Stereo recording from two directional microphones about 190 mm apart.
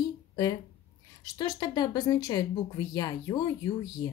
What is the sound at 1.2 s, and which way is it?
A woman's voice, 20° left (ahead or behind).